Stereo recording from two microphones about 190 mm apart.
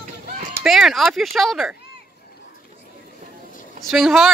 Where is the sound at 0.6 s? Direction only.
Centre (ahead or behind).